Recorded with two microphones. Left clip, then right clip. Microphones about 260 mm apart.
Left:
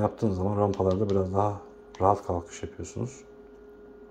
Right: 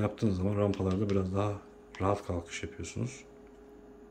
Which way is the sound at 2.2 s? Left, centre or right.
Centre.